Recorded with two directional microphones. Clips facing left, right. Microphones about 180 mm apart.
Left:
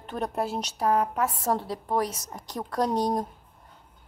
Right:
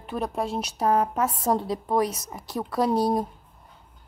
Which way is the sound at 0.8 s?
25° right (ahead or behind).